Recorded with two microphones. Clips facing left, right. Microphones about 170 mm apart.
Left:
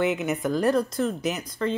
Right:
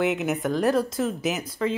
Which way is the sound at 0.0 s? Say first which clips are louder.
Even; centre (ahead or behind).